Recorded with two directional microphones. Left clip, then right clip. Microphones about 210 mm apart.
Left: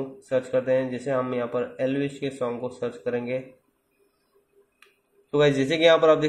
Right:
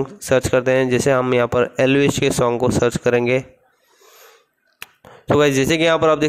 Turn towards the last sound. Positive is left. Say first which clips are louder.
# right 2 dB
turn(degrees=-35)  # may be behind; listen again after turning